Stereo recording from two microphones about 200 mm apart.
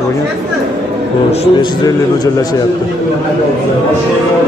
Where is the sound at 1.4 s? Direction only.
25° left (ahead or behind).